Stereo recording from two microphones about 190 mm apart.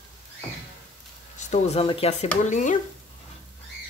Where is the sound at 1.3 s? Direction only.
40° left (ahead or behind).